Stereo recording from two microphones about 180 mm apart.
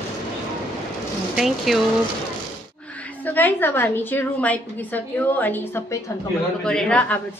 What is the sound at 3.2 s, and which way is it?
A woman's voice, 10° left (ahead or behind).